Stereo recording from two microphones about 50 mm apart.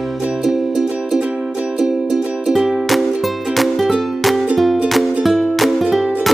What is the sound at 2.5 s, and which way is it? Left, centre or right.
Music, centre.